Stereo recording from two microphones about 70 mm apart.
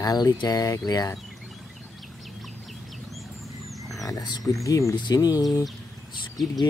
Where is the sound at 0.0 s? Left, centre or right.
Left.